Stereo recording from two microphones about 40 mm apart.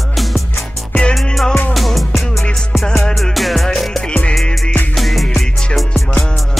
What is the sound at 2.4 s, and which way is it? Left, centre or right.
Music, centre.